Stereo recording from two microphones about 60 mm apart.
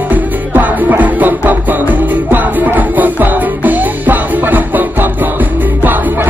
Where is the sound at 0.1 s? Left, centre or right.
Right.